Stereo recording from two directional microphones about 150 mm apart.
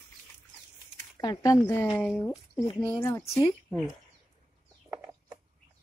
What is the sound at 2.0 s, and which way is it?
Speech, 5° left (ahead or behind).